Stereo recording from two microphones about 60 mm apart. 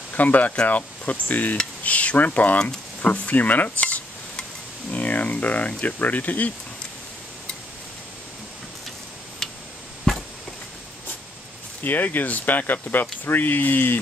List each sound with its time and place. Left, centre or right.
0.1 s speech: left
2.6 s speech: centre
3.3 s cutlery: left
4.9 s speech: left
9.4 s tick: centre
11.8 s speech: left